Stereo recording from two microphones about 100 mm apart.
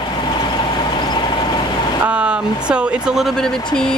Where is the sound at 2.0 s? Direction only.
10° right (ahead or behind); by 3.9 s 5° left (ahead or behind).